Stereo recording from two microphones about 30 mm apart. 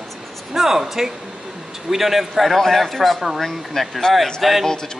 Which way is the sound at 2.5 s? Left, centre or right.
Centre.